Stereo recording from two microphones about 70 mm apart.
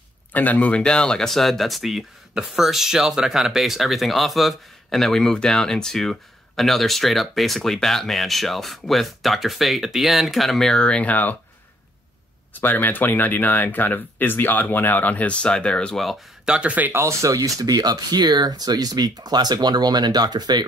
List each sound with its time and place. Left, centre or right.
0.3 s speech: left
12.5 s speech: left
16.4 s speech: centre
16.9 s speech: right